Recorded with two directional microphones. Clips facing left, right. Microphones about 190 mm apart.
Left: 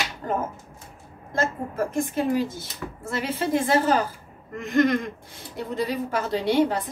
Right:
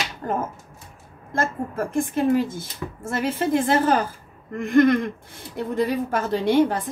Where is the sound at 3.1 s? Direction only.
50° right (ahead or behind).